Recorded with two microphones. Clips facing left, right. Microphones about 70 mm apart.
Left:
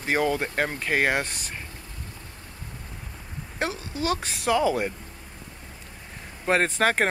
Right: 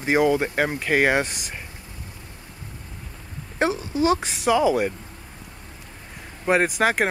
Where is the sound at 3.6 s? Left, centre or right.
Right.